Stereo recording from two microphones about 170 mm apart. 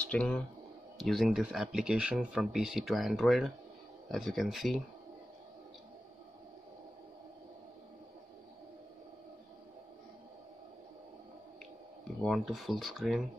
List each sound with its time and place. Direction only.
0.0 s speech: 5° left (ahead or behind)
12.2 s speech: centre (ahead or behind)